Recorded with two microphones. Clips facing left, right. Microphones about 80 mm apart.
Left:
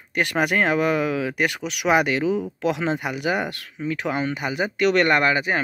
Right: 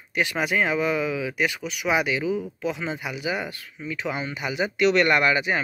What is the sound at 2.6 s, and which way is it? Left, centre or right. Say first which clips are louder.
Speech: left 5 dB; left.